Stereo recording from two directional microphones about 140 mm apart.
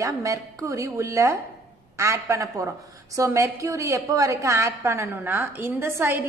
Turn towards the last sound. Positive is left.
turn(degrees=-15)  # may be behind; listen again after turning